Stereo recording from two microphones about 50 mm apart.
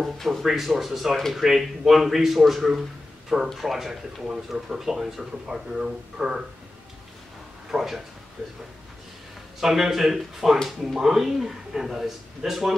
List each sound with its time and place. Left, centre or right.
0.0 s speech: centre
7.7 s speech: centre
8.4 s speech: right
9.6 s speech: centre